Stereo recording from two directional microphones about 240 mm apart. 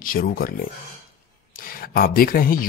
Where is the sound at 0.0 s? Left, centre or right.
Left.